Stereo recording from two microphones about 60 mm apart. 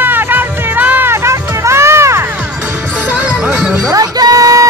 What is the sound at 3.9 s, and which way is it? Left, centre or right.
Music, right.